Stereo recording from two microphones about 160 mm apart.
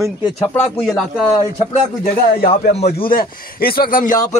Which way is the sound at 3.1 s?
70° left (ahead or behind).